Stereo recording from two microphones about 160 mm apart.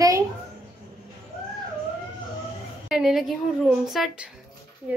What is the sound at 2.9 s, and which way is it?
A woman's voice, 5° right (ahead or behind).